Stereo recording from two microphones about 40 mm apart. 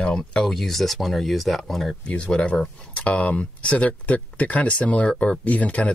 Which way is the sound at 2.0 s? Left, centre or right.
Left.